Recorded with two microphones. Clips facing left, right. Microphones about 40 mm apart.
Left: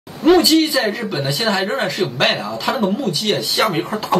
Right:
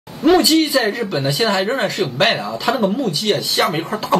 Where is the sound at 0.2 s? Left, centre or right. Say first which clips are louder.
Left 1 dB; centre.